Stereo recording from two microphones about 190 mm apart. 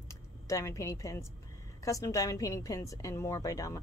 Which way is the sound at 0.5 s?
15° left (ahead or behind).